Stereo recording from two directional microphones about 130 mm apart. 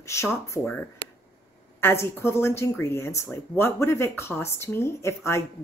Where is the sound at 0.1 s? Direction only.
20° left (ahead or behind).